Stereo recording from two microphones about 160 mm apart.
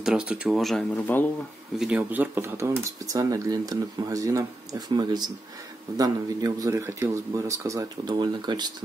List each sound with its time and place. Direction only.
0.0 s speech: 5° right (ahead or behind); by 8.7 s 25° right (ahead or behind)